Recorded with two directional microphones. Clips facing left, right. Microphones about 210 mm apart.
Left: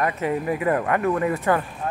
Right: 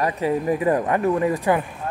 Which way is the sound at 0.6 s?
20° right (ahead or behind).